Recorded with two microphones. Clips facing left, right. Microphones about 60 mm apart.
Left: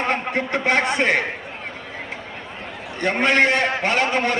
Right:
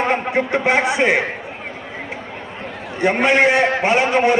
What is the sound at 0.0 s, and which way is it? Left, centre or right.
A man's voice, centre.